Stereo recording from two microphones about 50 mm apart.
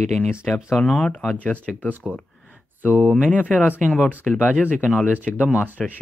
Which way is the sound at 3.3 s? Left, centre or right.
Left.